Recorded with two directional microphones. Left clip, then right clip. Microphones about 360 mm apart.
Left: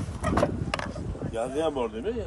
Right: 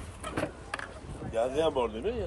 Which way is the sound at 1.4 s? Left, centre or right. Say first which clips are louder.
Even; right.